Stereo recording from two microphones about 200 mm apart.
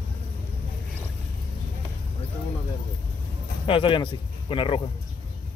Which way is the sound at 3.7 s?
25° left (ahead or behind).